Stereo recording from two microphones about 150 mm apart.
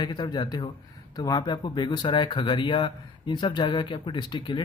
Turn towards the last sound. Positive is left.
turn(degrees=30)  # may be behind; listen again after turning